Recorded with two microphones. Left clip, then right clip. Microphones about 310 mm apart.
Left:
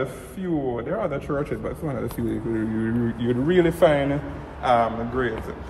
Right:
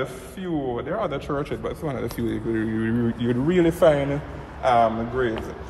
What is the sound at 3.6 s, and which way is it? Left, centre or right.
A man's voice, right.